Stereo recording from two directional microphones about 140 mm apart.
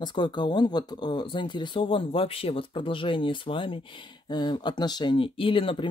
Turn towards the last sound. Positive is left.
turn(degrees=40)  # may be behind; listen again after turning